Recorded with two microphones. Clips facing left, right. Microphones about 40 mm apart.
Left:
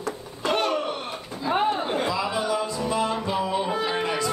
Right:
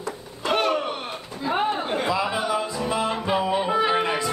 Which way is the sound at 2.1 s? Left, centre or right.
Centre.